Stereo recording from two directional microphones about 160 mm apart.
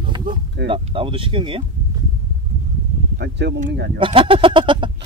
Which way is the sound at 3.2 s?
90° right.